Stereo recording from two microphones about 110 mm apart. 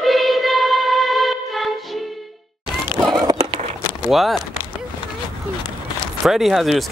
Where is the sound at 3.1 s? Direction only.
35° right (ahead or behind).